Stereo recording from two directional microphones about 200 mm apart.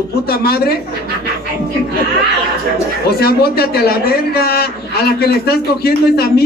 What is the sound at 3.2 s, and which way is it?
A man's voice, 50° left (ahead or behind).